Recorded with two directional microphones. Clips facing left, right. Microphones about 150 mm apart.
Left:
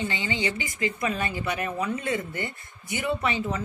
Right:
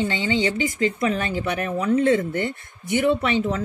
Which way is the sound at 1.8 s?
65° right (ahead or behind).